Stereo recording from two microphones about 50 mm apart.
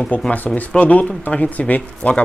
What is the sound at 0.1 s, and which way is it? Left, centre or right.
Speech, left.